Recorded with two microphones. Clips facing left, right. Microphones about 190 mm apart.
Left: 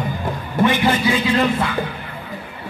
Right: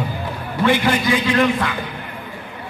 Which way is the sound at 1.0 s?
10° left (ahead or behind).